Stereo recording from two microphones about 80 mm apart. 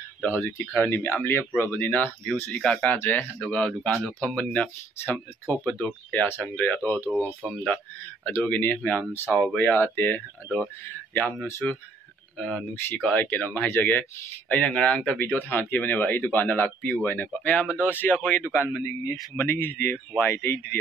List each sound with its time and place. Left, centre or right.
0.2 s speech: left
4.9 s speech: left
5.7 s speech: centre
11.6 s speech: centre
18.5 s a man's voice: left